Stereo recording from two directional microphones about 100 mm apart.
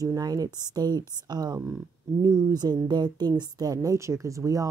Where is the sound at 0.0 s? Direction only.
35° right (ahead or behind).